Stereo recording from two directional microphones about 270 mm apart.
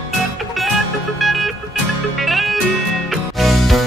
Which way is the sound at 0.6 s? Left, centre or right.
Centre.